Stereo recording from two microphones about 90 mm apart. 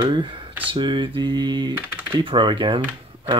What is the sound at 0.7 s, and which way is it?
Speech, 65° right (ahead or behind).